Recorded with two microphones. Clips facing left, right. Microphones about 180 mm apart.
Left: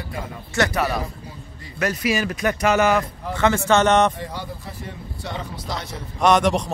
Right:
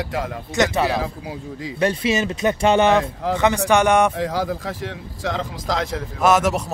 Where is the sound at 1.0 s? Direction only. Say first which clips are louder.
Right 5 dB; 90° right.